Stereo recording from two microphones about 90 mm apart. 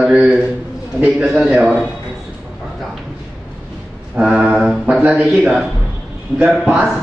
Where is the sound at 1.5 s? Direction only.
15° right (ahead or behind).